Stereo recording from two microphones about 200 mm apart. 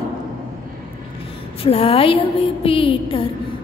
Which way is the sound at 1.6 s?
25° left (ahead or behind).